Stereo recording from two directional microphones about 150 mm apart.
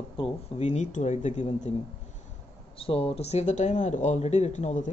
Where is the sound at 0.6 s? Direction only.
50° left (ahead or behind).